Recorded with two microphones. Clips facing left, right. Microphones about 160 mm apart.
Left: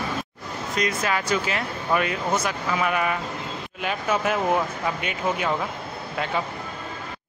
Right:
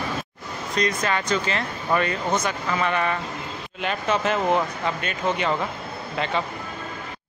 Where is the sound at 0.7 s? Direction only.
5° left (ahead or behind).